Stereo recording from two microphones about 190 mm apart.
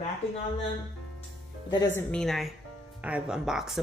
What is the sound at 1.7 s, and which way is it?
A woman's voice, 15° left (ahead or behind).